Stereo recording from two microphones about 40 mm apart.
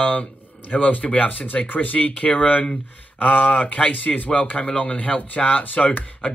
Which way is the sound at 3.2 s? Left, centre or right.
Left.